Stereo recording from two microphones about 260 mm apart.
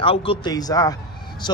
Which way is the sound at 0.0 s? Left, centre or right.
Left.